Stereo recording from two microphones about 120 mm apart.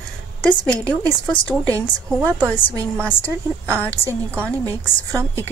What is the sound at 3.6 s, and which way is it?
Speech, 15° left (ahead or behind).